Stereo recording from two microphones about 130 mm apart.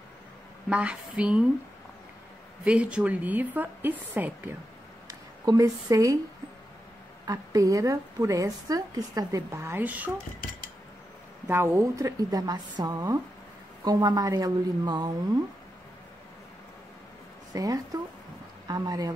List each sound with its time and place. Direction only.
0.7 s a woman's voice: 10° right (ahead or behind)
2.6 s a woman's voice: 10° right (ahead or behind)
5.4 s a woman's voice: 30° right (ahead or behind)
7.2 s a woman's voice: 25° right (ahead or behind)
11.4 s a woman's voice: 20° right (ahead or behind)
17.5 s a woman's voice: 25° right (ahead or behind)